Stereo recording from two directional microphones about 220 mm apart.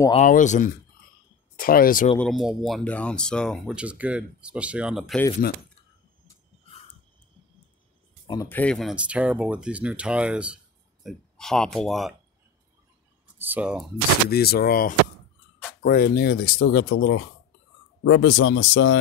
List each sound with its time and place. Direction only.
0.1 s speech: 35° left (ahead or behind)
2.1 s speech: centre (ahead or behind)
5.4 s speech: 45° left (ahead or behind)
8.3 s speech: 10° left (ahead or behind)
13.4 s speech: 5° right (ahead or behind)
14.3 s speech: 45° left (ahead or behind)